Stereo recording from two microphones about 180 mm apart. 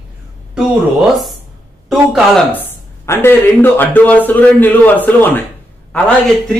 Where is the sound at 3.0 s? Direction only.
15° left (ahead or behind).